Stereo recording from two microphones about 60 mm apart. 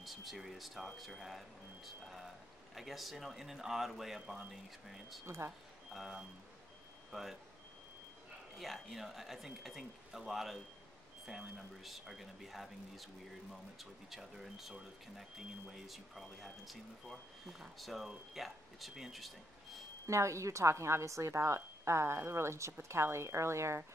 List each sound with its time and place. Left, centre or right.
0.0 s speech: centre
5.2 s a woman's voice: right
7.1 s speech: centre
8.5 s speech: centre
11.8 s speech: centre
20.1 s a woman's voice: right